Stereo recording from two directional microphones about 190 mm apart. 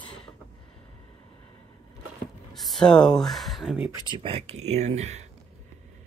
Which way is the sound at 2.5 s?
Centre (ahead or behind).